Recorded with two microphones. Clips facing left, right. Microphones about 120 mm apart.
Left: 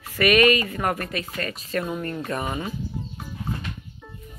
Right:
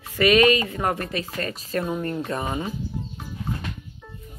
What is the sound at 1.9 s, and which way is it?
Speech, 20° right (ahead or behind).